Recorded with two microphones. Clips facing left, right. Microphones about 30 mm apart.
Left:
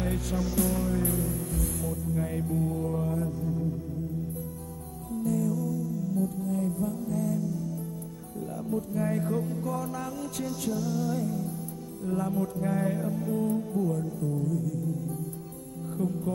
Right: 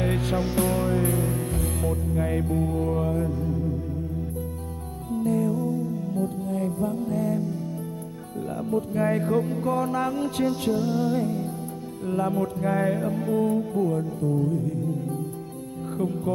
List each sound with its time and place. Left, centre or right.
0.0 s music: right
5.1 s music: right
16.0 s speech: right